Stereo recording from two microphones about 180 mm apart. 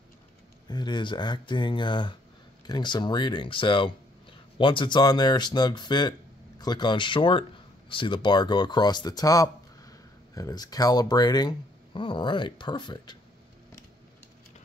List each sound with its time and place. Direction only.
0.7 s speech: 25° left (ahead or behind)